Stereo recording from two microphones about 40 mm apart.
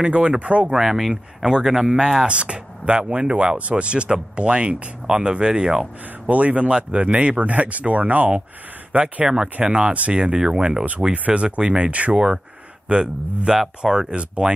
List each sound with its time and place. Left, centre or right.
0.0 s speech: right
0.7 s speech: centre
2.2 s speech: right
6.2 s speech: right
9.2 s speech: centre
13.5 s speech: centre
13.9 s speech: right